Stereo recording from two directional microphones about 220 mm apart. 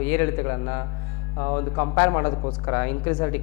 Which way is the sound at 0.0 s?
10° left (ahead or behind).